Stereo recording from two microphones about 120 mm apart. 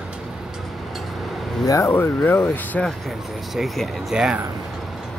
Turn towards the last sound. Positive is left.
turn(degrees=-5)  # may be behind; listen again after turning